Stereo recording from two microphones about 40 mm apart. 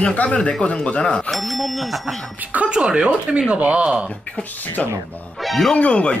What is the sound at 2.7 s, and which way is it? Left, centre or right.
Speech, right.